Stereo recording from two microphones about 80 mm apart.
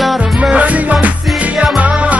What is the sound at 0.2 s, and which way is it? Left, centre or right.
Music, centre.